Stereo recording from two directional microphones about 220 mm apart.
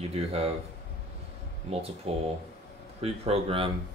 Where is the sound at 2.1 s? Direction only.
25° right (ahead or behind).